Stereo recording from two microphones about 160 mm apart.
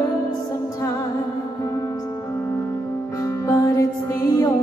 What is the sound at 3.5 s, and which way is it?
Music, 20° left (ahead or behind).